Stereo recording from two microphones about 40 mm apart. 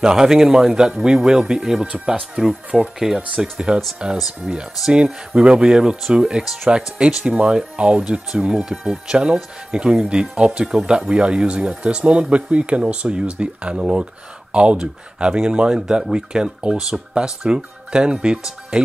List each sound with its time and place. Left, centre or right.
0.0 s speech: centre
6.4 s speech: centre
7.2 s speech: right
15.7 s speech: centre